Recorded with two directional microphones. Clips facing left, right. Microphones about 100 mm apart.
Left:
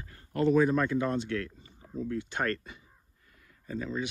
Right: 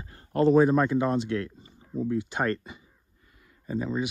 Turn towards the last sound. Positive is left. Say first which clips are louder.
# right 5 dB
turn(degrees=-15)  # may be behind; listen again after turning